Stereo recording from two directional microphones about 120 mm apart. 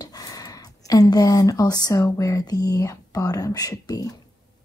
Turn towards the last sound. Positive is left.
turn(degrees=30)  # may be behind; listen again after turning